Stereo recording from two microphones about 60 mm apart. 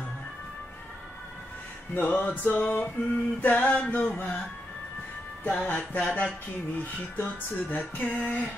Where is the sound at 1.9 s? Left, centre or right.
Left.